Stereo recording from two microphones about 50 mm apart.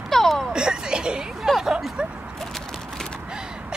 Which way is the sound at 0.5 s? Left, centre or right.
Centre.